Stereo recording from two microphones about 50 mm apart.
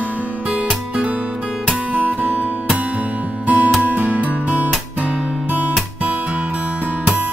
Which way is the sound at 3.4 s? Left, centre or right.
Right.